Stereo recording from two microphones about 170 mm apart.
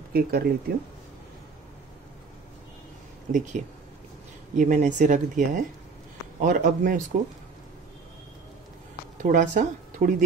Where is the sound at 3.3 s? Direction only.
45° right (ahead or behind).